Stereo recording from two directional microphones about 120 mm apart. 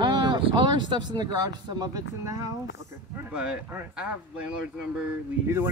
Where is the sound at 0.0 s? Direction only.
35° right (ahead or behind).